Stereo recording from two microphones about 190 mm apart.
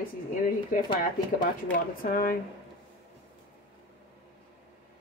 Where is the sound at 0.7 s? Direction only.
45° left (ahead or behind).